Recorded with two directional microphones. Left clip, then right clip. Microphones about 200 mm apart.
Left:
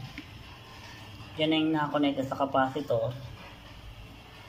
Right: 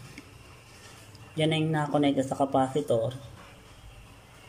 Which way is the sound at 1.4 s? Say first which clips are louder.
Left 1 dB; 25° right (ahead or behind).